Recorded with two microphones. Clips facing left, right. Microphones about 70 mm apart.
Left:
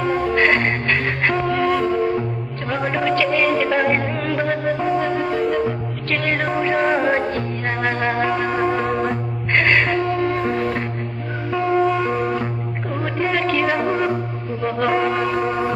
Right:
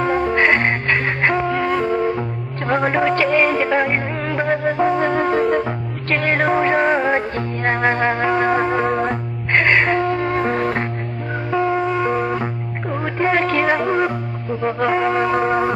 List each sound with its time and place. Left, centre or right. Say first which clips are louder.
0.0 s music: right 1 dB; right
2.7 s music: right 3 dB; right
3.6 s music: even; centre
4.6 s music: right 2 dB; right
6.0 s music: right 4 dB; right
7.0 s music: even; centre
7.3 s music: right 3 dB; right
8.8 s music: right 2 dB; centre
9.5 s music: right 2 dB; centre
9.9 s music: right 1 dB; right
11.5 s music: left 1 dB; centre
13.2 s music: right 3 dB; right
14.8 s music: even; centre
15.3 s music: right 3 dB; right